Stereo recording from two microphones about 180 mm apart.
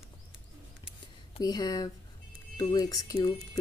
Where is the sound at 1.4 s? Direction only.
20° left (ahead or behind).